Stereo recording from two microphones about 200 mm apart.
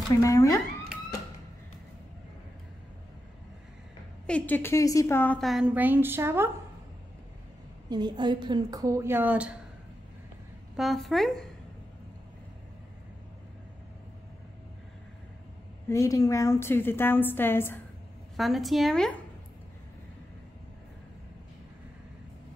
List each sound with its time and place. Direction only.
0.2 s a woman's voice: 15° left (ahead or behind)
4.3 s a woman's voice: 10° left (ahead or behind); by 6.5 s 10° right (ahead or behind)
7.9 s a woman's voice: 20° right (ahead or behind); by 9.6 s 5° right (ahead or behind)
10.8 s a woman's voice: centre (ahead or behind)
15.9 s a woman's voice: 15° left (ahead or behind)
18.3 s a woman's voice: centre (ahead or behind)